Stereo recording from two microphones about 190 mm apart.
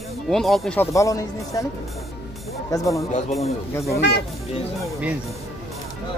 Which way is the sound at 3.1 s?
35° left (ahead or behind).